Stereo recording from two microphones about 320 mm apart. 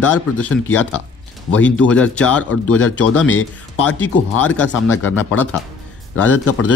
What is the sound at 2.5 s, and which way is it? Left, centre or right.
Speech, left.